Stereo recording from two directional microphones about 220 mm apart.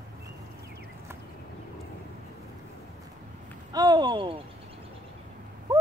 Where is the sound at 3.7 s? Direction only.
20° right (ahead or behind).